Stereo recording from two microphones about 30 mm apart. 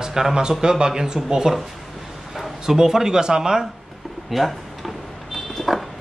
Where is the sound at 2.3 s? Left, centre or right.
Centre.